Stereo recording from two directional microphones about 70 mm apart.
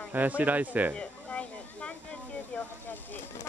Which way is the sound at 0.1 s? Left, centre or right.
Right.